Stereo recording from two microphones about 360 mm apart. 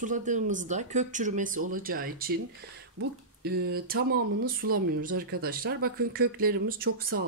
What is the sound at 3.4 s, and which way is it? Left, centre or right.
Speech, right.